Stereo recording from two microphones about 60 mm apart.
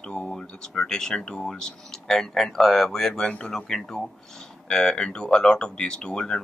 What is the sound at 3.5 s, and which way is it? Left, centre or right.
Speech, centre.